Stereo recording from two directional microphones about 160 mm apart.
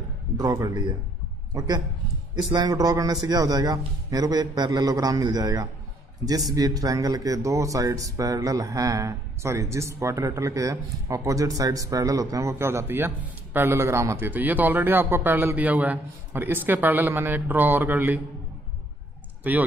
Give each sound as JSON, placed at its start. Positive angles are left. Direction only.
{"t": 0.4, "sound": "a man's voice", "side_deg": -20}
{"t": 19.4, "sound": "a man's voice", "side_deg": -10}